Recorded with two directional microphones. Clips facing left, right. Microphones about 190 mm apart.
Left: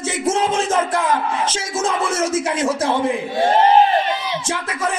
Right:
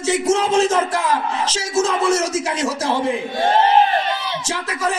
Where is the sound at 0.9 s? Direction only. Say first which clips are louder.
Left 1 dB; 55° left (ahead or behind).